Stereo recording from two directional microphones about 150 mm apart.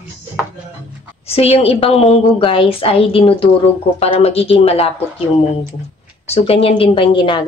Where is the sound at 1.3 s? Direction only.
40° left (ahead or behind).